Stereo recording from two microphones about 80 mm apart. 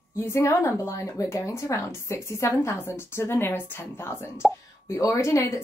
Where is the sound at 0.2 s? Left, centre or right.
Left.